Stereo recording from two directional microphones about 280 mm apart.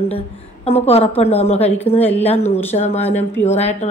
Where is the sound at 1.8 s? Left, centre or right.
Centre.